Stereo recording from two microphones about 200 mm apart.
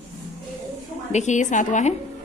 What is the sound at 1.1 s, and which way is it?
Speech, 35° left (ahead or behind).